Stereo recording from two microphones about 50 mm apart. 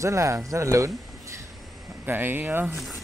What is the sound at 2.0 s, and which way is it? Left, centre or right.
Speech, right.